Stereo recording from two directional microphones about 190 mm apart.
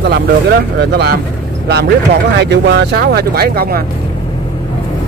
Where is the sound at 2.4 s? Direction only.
65° right (ahead or behind).